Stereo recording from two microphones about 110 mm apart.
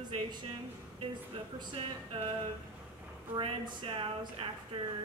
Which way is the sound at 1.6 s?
50° right (ahead or behind).